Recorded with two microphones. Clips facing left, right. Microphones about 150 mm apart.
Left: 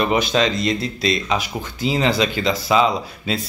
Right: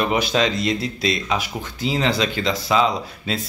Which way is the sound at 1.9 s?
5° left (ahead or behind).